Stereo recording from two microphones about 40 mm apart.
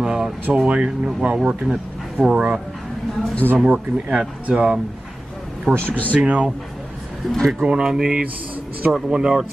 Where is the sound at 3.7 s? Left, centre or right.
Right.